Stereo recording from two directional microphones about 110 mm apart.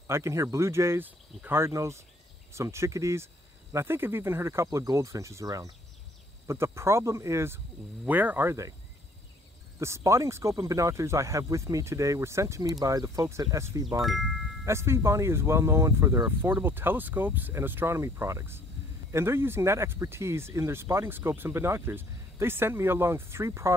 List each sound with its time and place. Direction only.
0.0 s speech: 25° right (ahead or behind)
9.8 s speech: 25° right (ahead or behind)
14.0 s speech: centre (ahead or behind)
14.6 s speech: 25° right (ahead or behind)